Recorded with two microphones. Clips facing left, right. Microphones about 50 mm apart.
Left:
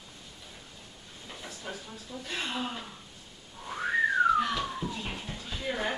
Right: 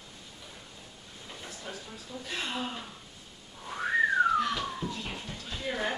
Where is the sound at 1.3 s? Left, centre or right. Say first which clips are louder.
Left 1 dB; centre.